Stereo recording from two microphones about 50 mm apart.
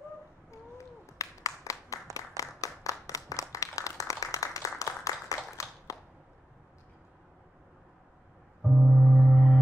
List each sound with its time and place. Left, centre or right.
0.5 s clapping: left
2.1 s a sound: left
8.6 s gong: centre